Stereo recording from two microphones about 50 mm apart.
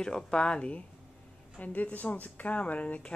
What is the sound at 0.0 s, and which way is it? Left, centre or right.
Speech, centre.